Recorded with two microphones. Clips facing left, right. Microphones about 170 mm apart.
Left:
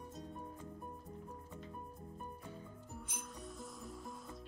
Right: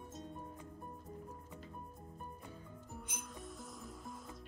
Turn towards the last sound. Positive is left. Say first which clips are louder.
# even
turn(degrees=0)  # may be behind; listen again after turning